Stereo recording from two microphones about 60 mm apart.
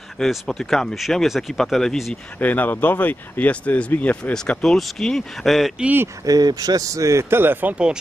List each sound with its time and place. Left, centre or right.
0.2 s speech: centre
2.3 s speech: left
4.2 s speech: centre
6.2 s a man's voice: right
7.6 s speech: centre